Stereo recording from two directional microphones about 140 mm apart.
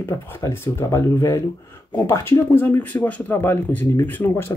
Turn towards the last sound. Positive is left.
turn(degrees=15)  # may be behind; listen again after turning